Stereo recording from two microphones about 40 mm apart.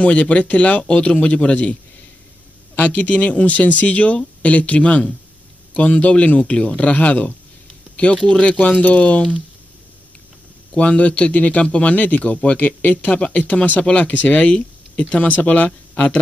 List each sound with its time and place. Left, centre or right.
0.0 s speech: left
7.9 s a sound: left
8.3 s speech: left
10.7 s speech: left